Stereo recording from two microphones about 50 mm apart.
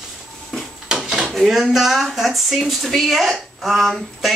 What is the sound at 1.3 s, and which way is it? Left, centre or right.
A woman's voice, centre.